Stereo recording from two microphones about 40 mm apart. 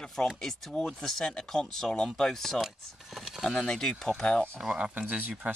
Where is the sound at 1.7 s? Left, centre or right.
Centre.